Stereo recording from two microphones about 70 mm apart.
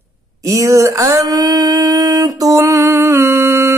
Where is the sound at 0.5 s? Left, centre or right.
Right.